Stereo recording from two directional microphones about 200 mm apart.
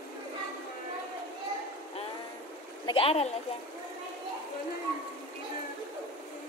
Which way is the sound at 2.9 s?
30° left (ahead or behind).